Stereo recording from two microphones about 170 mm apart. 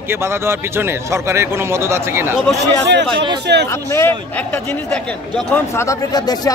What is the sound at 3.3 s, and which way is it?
Speech, 85° right.